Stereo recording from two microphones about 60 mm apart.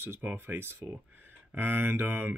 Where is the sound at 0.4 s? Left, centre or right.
Right.